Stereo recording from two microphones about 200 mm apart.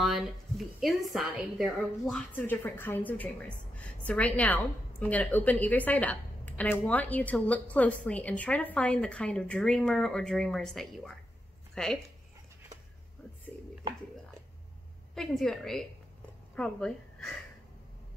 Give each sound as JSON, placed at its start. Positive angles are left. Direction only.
{"t": 0.0, "sound": "a woman's voice", "side_deg": 0}
{"t": 15.1, "sound": "a woman's voice", "side_deg": 0}